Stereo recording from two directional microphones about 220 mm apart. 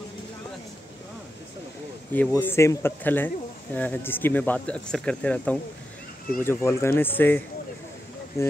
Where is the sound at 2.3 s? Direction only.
10° left (ahead or behind).